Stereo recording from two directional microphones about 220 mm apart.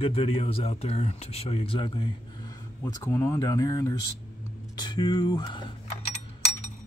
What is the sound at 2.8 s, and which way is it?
Speech, 15° left (ahead or behind).